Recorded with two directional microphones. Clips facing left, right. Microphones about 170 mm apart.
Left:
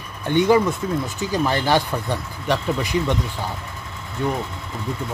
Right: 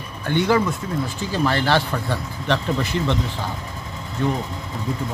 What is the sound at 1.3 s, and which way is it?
Speech, 15° left (ahead or behind).